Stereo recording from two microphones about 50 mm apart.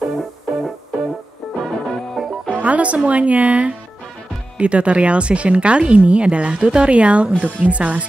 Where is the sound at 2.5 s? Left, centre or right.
Right.